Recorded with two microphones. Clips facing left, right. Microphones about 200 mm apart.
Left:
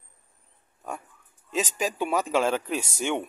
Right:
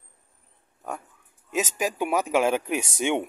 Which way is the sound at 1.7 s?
10° right (ahead or behind).